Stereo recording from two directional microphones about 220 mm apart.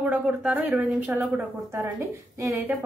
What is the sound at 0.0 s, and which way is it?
A woman's voice, 5° right (ahead or behind).